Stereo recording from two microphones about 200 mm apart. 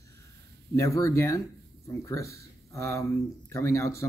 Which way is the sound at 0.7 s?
15° left (ahead or behind).